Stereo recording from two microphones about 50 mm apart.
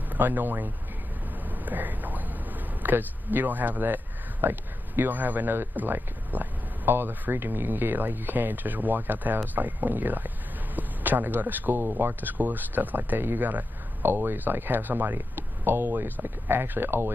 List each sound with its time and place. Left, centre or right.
0.1 s speech: right
1.7 s speech: right